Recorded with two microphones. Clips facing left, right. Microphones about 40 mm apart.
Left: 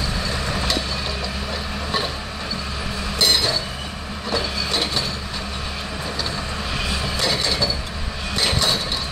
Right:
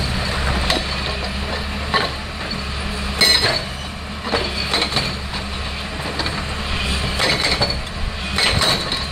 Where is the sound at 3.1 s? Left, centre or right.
Right.